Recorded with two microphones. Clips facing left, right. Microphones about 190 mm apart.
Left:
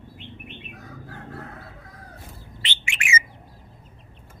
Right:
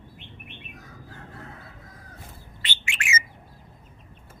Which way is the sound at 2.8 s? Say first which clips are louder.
Left 2 dB; 15° left (ahead or behind).